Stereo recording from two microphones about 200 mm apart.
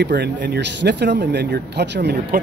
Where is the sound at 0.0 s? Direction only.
60° right (ahead or behind).